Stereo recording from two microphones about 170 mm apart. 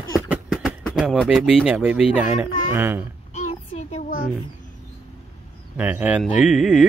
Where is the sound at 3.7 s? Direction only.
40° left (ahead or behind).